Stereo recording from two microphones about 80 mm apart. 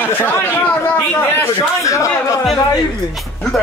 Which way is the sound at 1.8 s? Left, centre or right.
Left.